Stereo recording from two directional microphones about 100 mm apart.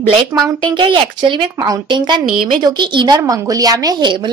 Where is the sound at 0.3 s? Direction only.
20° right (ahead or behind).